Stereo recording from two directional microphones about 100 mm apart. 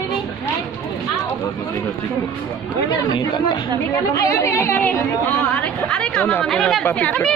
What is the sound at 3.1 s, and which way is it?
Speech, 55° left (ahead or behind).